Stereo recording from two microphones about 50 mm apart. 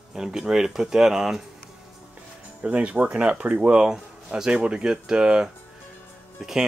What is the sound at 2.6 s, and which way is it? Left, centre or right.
Speech, right.